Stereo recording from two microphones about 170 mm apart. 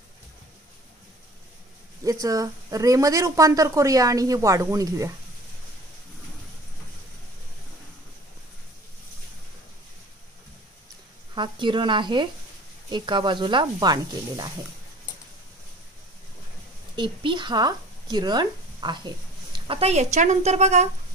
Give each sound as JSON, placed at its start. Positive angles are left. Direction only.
{"t": 2.0, "sound": "a woman's voice", "side_deg": -20}
{"t": 11.3, "sound": "a woman's voice", "side_deg": -30}
{"t": 16.9, "sound": "speech", "side_deg": -30}